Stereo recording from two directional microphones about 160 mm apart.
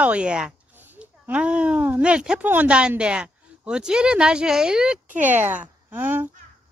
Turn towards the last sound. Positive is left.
turn(degrees=-10)  # may be behind; listen again after turning